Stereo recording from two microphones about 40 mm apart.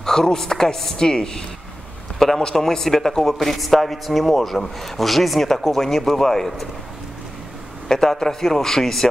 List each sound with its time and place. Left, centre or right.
0.0 s speech: centre
2.1 s a man's voice: centre
7.9 s speech: centre